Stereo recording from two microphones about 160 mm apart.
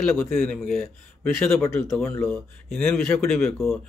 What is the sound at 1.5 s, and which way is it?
Speech, 15° left (ahead or behind).